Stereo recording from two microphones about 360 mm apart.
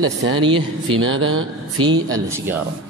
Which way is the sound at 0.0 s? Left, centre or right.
Right.